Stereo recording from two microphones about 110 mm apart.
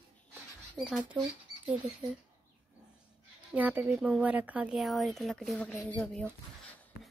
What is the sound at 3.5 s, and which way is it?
Speech, 15° right (ahead or behind).